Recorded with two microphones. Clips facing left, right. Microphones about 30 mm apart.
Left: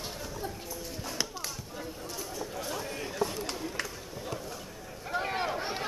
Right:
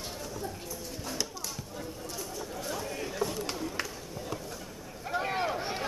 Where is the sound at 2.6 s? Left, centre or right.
Centre.